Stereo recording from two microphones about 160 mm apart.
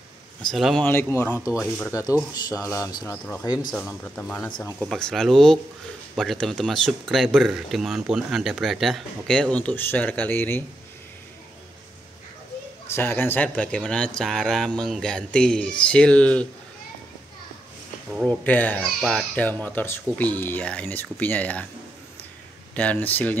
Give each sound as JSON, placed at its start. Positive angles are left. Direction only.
{"t": 0.5, "sound": "speech", "side_deg": 0}
{"t": 0.8, "sound": "speech", "side_deg": 15}
{"t": 1.3, "sound": "speech", "side_deg": -5}
{"t": 1.9, "sound": "speech", "side_deg": 20}
{"t": 3.7, "sound": "speech", "side_deg": 0}
{"t": 12.8, "sound": "speech", "side_deg": 15}
{"t": 18.3, "sound": "speech", "side_deg": 10}
{"t": 22.8, "sound": "speech", "side_deg": 10}